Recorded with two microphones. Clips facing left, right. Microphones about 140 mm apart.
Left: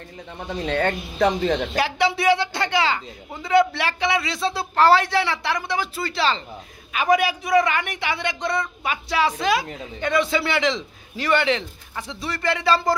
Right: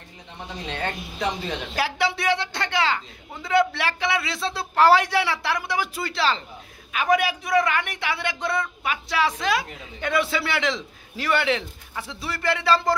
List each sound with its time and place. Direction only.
0.7 s speech: 60° left (ahead or behind)
1.8 s a man's voice: centre (ahead or behind)
4.7 s a woman's voice: 10° right (ahead or behind)